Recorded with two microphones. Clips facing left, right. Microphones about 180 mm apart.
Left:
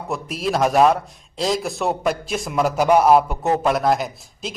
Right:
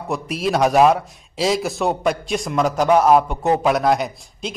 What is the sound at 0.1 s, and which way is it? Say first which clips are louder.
Speech: right 2 dB; centre (ahead or behind).